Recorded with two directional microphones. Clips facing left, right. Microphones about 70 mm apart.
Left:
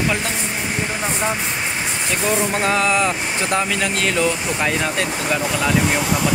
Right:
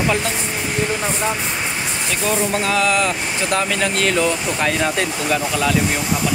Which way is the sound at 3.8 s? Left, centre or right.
Centre.